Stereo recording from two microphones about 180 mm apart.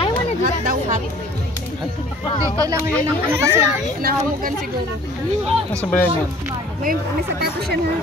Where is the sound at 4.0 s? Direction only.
55° right (ahead or behind).